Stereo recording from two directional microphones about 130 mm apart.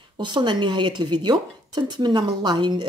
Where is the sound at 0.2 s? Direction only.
35° right (ahead or behind).